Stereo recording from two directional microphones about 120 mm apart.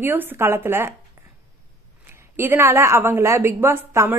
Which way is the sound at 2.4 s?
20° right (ahead or behind).